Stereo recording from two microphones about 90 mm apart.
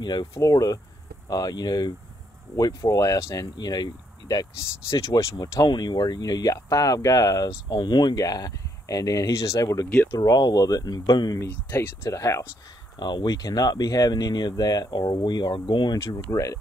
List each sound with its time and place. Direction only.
0.0 s speech: 50° left (ahead or behind)
0.3 s speech: 40° left (ahead or behind)
3.5 s speech: 50° left (ahead or behind)
4.8 s speech: 35° left (ahead or behind)
7.7 s speech: 55° left (ahead or behind)
11.7 s speech: 30° left (ahead or behind)
13.0 s speech: 55° left (ahead or behind)
16.0 s speech: 40° left (ahead or behind)